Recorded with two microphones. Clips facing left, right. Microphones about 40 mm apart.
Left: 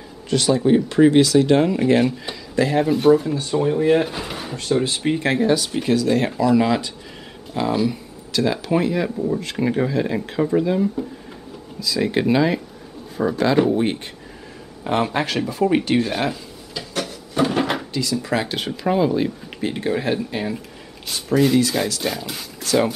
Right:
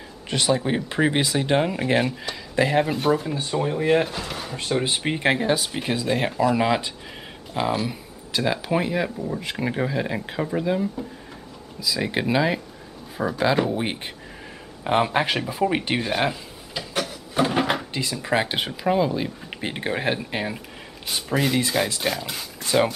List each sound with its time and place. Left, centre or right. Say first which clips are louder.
0.3 s speech: left 6 dB; centre
3.0 s speech: left 7 dB; centre
4.1 s speech: left 2 dB; centre
4.6 s speech: left 3 dB; centre
15.8 s a sound: left 3 dB; centre
17.0 s cupboard open or close: left 2 dB; centre
18.2 s speech: even; right
18.7 s speech: left 5 dB; centre
19.6 s speech: left 3 dB; right
21.1 s speech: left 6 dB; centre